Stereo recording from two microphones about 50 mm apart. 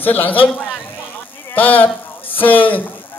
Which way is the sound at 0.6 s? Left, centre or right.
Left.